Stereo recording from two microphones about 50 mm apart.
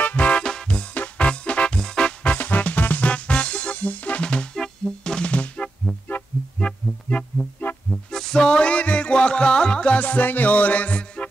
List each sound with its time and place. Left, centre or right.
0.0 s music: left
0.4 s music: centre
0.9 s music: left
2.2 s music: left
3.1 s music: left
4.2 s music: centre
5.2 s music: left
6.6 s music: left
7.9 s music: centre